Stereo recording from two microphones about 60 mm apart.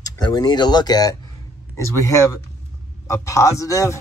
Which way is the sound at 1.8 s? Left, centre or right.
Left.